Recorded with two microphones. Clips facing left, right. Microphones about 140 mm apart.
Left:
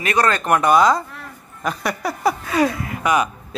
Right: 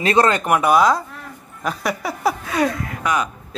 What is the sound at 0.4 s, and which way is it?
Speech, 5° right (ahead or behind).